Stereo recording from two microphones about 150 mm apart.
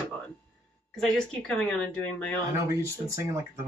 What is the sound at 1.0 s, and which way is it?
Speech, 5° left (ahead or behind).